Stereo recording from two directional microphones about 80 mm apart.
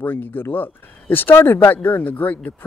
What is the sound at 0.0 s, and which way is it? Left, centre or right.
Speech, left.